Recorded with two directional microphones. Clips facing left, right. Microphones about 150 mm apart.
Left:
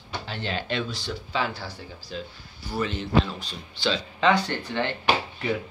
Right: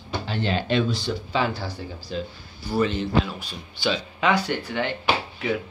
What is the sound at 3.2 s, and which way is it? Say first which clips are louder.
A man's voice: right 1 dB; 10° right (ahead or behind).